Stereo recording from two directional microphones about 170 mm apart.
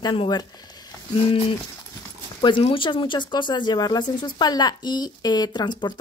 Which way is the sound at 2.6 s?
30° left (ahead or behind).